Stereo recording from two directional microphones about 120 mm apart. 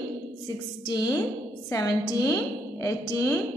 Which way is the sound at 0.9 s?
30° left (ahead or behind).